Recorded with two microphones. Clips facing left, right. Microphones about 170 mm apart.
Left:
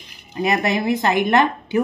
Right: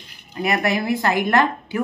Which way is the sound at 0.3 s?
20° left (ahead or behind).